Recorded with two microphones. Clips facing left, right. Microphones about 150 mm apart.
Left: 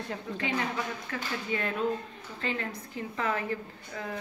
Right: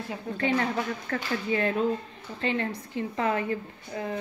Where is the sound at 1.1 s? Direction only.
45° right (ahead or behind).